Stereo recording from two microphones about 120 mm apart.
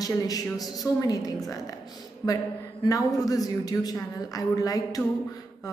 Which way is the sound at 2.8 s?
30° left (ahead or behind).